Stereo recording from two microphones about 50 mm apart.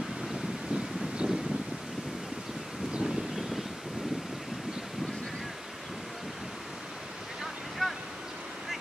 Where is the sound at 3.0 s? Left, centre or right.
Centre.